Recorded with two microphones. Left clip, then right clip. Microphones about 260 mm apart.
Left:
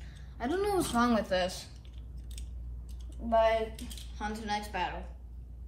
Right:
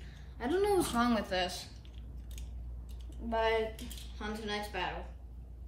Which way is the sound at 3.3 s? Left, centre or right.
Centre.